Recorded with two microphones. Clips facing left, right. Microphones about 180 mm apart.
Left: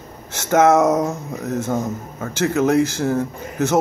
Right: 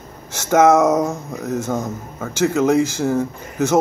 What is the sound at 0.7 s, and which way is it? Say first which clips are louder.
Speech: right 1 dB; 5° left (ahead or behind).